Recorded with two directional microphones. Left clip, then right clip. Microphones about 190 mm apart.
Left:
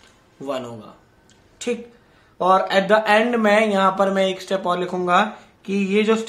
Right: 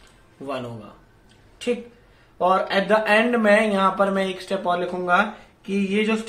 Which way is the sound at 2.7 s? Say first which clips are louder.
Left 3 dB; 35° left (ahead or behind).